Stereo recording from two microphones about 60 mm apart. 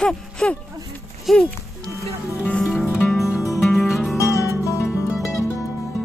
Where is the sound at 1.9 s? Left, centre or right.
Right.